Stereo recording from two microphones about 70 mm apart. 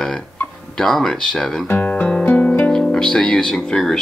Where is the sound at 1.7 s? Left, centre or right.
Left.